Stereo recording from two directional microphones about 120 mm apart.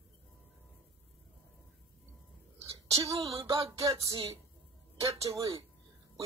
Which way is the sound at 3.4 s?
25° right (ahead or behind).